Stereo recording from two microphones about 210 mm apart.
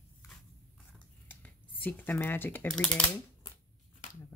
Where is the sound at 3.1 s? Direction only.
20° left (ahead or behind).